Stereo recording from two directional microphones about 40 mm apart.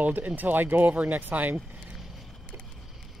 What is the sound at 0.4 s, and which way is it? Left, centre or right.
Speech, right.